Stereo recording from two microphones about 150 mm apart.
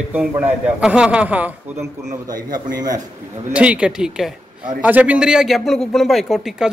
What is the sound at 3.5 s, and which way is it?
A man's voice, 10° right (ahead or behind).